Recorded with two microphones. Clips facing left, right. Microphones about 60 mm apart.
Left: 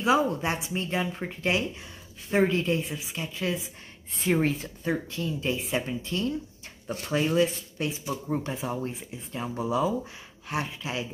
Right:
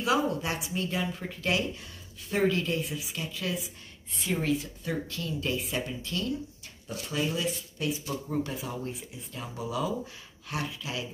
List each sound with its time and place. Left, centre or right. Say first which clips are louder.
0.0 s speech: left 3 dB; left
5.1 s speech: left 2 dB; left
6.9 s speech: left 5 dB; left